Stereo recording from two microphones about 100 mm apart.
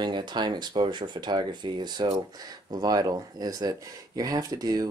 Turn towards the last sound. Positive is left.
turn(degrees=-40)  # may be behind; listen again after turning